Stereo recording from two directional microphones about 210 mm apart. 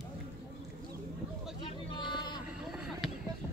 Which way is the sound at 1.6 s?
20° left (ahead or behind).